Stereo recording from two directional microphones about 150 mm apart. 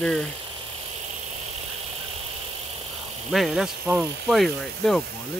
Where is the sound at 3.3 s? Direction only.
Centre (ahead or behind).